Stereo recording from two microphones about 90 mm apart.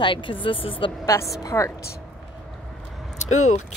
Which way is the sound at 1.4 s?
35° left (ahead or behind).